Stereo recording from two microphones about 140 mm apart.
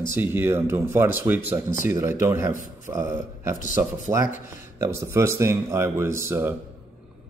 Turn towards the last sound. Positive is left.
turn(degrees=-20)  # may be behind; listen again after turning